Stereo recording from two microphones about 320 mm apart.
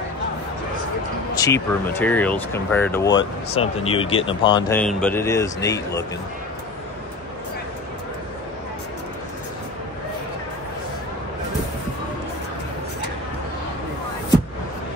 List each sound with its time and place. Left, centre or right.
1.3 s speech: centre